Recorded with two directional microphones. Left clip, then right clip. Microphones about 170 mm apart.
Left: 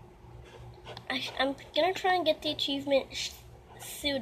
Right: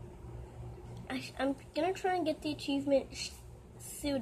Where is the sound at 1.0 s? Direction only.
20° right (ahead or behind).